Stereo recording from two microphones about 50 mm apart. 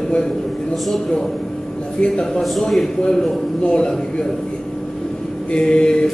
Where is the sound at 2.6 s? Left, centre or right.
Centre.